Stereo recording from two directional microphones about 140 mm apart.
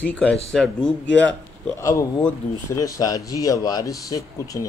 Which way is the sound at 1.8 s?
20° left (ahead or behind).